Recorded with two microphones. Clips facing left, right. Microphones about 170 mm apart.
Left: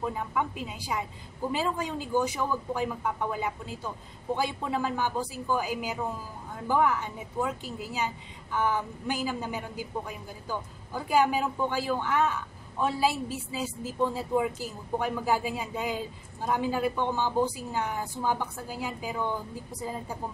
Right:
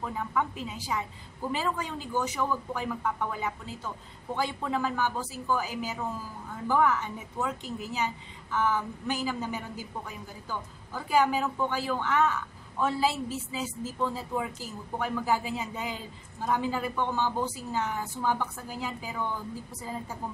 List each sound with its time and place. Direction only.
0.0 s a woman's voice: 15° left (ahead or behind)